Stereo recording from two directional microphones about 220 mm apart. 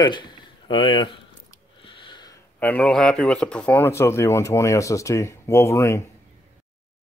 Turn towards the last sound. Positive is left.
turn(degrees=15)  # may be behind; listen again after turning